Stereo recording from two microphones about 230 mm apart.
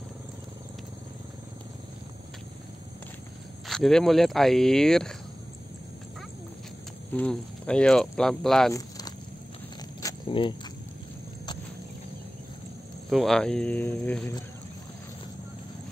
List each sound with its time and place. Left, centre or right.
3.6 s speech: centre
7.2 s speech: centre
8.7 s a sound: centre
13.1 s speech: centre